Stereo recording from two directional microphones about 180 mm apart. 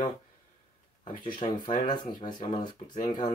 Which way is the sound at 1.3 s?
25° left (ahead or behind).